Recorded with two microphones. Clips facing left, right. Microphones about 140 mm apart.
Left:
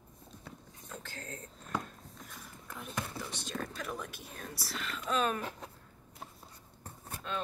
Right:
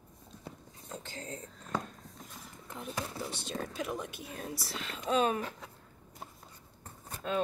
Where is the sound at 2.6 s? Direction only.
25° right (ahead or behind).